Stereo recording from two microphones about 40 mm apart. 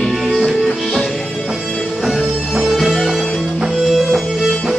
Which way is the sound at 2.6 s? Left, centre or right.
Centre.